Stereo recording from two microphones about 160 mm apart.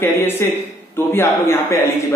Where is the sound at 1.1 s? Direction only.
15° left (ahead or behind).